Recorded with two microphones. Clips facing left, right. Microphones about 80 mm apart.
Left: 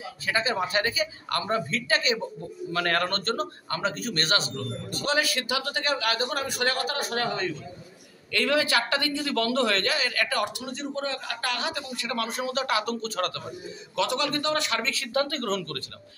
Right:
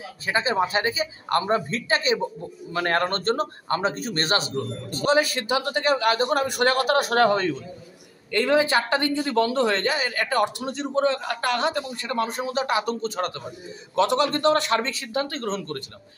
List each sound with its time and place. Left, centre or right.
0.3 s a man's voice: right
7.2 s a man's voice: right
8.3 s a man's voice: right
11.1 s a man's voice: right
11.9 s speech: right
12.8 s a man's voice: centre
13.9 s a man's voice: right
15.1 s a man's voice: centre